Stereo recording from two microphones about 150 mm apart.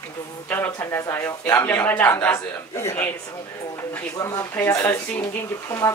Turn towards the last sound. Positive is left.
turn(degrees=20)  # may be behind; listen again after turning